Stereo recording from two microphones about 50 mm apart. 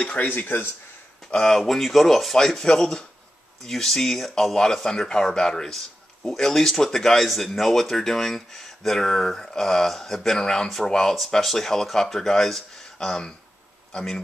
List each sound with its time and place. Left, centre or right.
0.0 s speech: left
1.3 s speech: centre
1.6 s speech: centre